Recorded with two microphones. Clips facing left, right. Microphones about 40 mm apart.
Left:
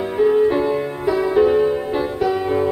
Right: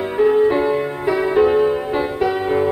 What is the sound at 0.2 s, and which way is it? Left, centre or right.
Music, centre.